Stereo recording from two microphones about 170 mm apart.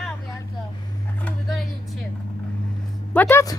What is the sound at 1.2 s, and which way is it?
Vehicle, 5° left (ahead or behind).